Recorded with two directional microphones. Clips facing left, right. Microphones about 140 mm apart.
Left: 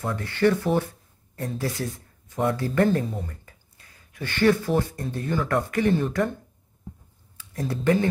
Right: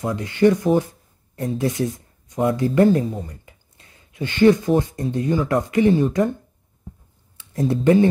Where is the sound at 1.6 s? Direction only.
20° right (ahead or behind).